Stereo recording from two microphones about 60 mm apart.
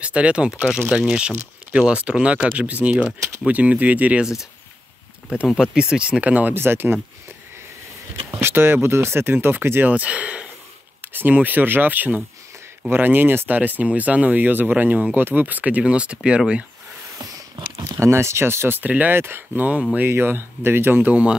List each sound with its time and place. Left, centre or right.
0.0 s speech: centre
4.2 s speech: centre
5.5 s speech: centre
6.5 s speech: right
8.3 s speech: right
11.0 s speech: right; by 16.6 s centre
17.7 s speech: right
18.8 s speech: right
19.1 s speech: right
21.1 s speech: right